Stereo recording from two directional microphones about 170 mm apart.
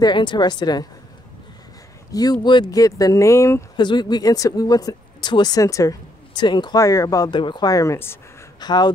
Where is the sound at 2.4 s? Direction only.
25° left (ahead or behind).